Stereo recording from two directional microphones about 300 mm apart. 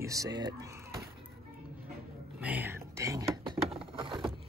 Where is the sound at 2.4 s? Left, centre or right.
Centre.